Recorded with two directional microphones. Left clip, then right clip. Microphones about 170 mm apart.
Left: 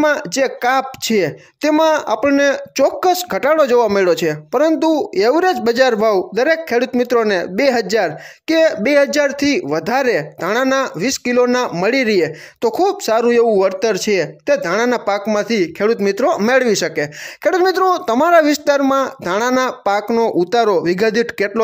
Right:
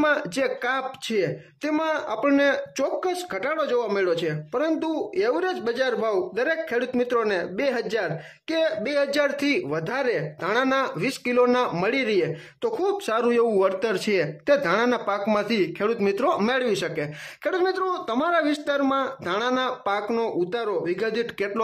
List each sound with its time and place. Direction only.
0.0 s speech: 30° left (ahead or behind)
3.0 s speech: 45° left (ahead or behind)
9.1 s speech: 30° left (ahead or behind)
14.9 s speech: 30° left (ahead or behind)
16.4 s speech: 35° left (ahead or behind)
20.3 s speech: 45° left (ahead or behind)